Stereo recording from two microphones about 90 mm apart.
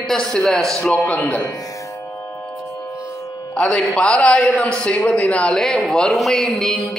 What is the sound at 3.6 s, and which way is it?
A man's voice, 10° left (ahead or behind).